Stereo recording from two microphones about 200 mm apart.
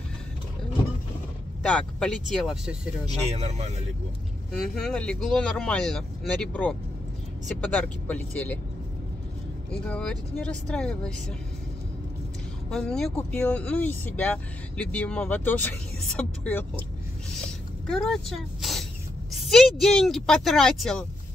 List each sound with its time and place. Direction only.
1.7 s speech: 5° left (ahead or behind)
3.1 s speech: 35° right (ahead or behind)
4.6 s speech: centre (ahead or behind)
9.7 s speech: 5° left (ahead or behind)
12.6 s speech: 5° left (ahead or behind)
17.8 s speech: centre (ahead or behind)